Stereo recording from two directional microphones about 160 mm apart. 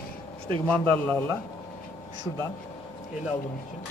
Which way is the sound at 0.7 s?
10° left (ahead or behind).